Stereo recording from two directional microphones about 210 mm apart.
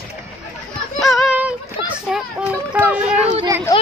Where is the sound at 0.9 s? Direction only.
Centre (ahead or behind).